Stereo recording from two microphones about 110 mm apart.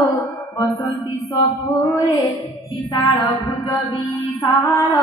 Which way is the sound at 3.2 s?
30° left (ahead or behind).